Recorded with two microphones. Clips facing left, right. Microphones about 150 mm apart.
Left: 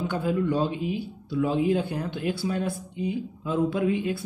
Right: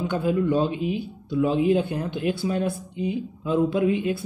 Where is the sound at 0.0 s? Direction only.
20° right (ahead or behind).